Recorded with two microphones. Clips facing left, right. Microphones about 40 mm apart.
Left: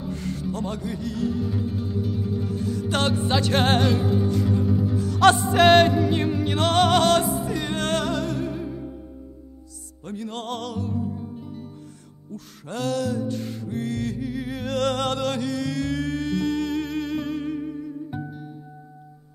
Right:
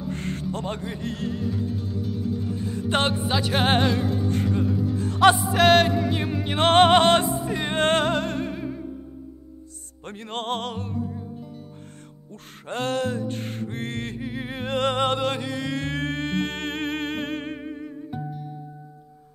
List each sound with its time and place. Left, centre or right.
0.1 s music: right
1.4 s music: centre
2.9 s music: right
3.2 s music: centre
3.9 s music: centre
4.9 s music: right
5.2 s music: centre
6.6 s music: right
10.0 s music: right
12.3 s music: right
18.1 s music: centre